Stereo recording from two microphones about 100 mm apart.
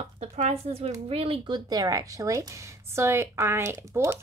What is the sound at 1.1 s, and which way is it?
Speech, 75° right (ahead or behind).